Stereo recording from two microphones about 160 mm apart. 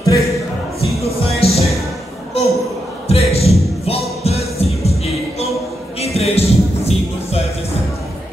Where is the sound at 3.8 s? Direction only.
40° left (ahead or behind).